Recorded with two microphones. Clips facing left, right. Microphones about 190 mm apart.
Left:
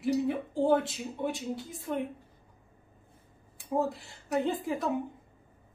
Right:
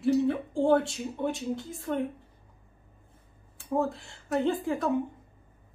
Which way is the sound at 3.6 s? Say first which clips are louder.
Right 1 dB; 15° left (ahead or behind).